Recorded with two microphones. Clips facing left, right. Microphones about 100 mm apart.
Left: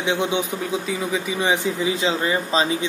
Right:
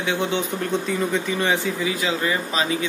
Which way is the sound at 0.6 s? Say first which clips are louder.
Right 2 dB; 5° left (ahead or behind).